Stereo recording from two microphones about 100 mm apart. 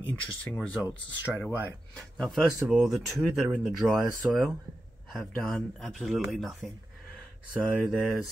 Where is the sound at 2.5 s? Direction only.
10° right (ahead or behind).